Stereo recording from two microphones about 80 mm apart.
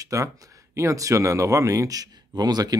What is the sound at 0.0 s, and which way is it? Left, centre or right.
Speech, right.